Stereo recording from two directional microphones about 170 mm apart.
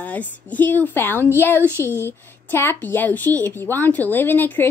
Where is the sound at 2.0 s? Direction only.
15° left (ahead or behind).